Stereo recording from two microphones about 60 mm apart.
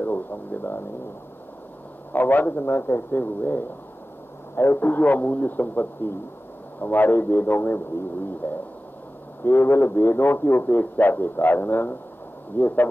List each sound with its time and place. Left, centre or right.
0.0 s speech: left
2.1 s a man's voice: left
4.8 s a man's voice: left